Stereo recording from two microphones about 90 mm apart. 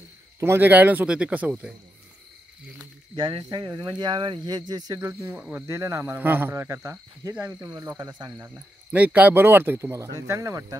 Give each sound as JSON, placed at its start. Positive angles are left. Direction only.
{"t": 0.4, "sound": "speech", "side_deg": -25}
{"t": 3.2, "sound": "speech", "side_deg": -65}
{"t": 5.0, "sound": "speech", "side_deg": -25}
{"t": 5.7, "sound": "speech", "side_deg": -35}
{"t": 6.1, "sound": "speech", "side_deg": -20}
{"t": 7.3, "sound": "speech", "side_deg": -15}
{"t": 8.0, "sound": "speech", "side_deg": -50}
{"t": 8.9, "sound": "speech", "side_deg": -15}
{"t": 9.8, "sound": "speech", "side_deg": -35}